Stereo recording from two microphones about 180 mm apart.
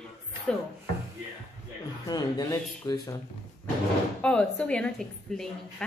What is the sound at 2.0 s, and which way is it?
Speech, 20° left (ahead or behind).